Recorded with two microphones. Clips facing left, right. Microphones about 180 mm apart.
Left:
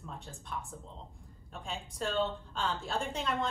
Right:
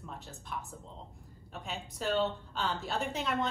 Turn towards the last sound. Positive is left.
turn(degrees=-5)  # may be behind; listen again after turning